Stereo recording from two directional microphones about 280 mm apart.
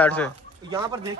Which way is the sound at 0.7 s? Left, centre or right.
Centre.